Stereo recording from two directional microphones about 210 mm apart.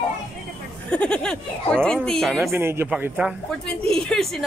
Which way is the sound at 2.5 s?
10° right (ahead or behind).